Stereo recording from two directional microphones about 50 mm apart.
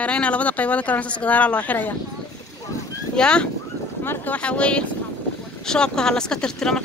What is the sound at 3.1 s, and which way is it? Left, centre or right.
Speech, centre.